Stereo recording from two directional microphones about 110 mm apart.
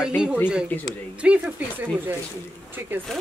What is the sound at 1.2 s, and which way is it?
Speech, 10° right (ahead or behind).